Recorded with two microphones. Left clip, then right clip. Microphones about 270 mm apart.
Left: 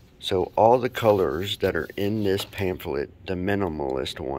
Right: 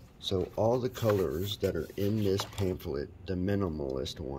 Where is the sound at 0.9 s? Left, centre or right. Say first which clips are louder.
Left 9 dB; centre.